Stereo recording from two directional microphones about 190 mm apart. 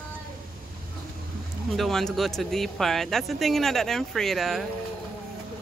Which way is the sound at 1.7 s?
Centre (ahead or behind).